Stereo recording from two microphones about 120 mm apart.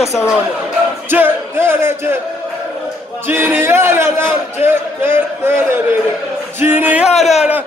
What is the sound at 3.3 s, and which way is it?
A man's voice, 15° right (ahead or behind).